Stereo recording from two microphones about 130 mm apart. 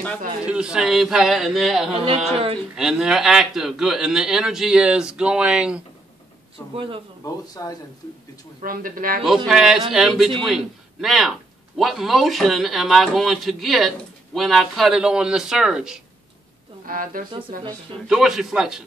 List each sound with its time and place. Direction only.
0.5 s speech: 5° right (ahead or behind)
2.0 s a woman's voice: 50° right (ahead or behind)
2.7 s speech: 5° right (ahead or behind)
6.7 s a woman's voice: 40° right (ahead or behind)
7.4 s speech: 30° left (ahead or behind)
8.6 s speech: 90° right
9.2 s speech: centre (ahead or behind)
16.8 s speech: 90° right
17.3 s speech: 35° right (ahead or behind)
18.0 s speech: 5° right (ahead or behind)